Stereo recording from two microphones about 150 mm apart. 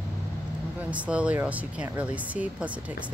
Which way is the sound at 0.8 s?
10° right (ahead or behind).